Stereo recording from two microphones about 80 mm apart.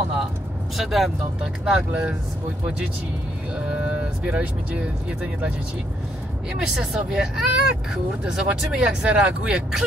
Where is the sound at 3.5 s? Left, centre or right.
Centre.